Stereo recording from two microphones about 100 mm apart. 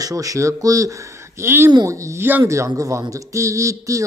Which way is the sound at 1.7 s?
35° right (ahead or behind).